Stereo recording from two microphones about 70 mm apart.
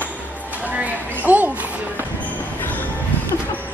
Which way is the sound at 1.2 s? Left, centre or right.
Right.